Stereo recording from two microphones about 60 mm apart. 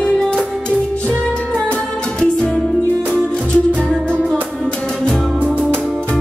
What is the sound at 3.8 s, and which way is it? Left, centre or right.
Music, centre.